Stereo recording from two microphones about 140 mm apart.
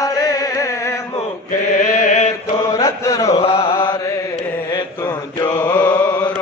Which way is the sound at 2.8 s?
25° left (ahead or behind).